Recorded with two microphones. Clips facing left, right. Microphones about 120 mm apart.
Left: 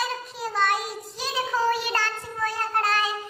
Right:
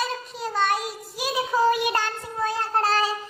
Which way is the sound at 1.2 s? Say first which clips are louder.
Right 3 dB; 15° right (ahead or behind).